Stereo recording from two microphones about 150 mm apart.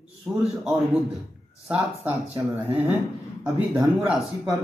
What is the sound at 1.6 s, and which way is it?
Speech, 10° right (ahead or behind).